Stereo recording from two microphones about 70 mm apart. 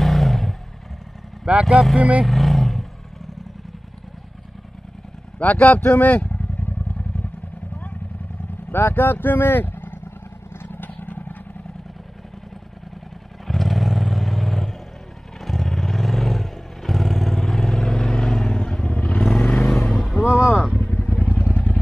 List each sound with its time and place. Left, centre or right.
0.0 s a sound: centre
1.4 s speech: centre
2.2 s roaring cats: centre
5.4 s vehicle: left
8.7 s speech: left
10.6 s vehicle: left
13.5 s vehicle: centre
19.2 s vehicle: centre
20.2 s boat: left
20.7 s vehicle: left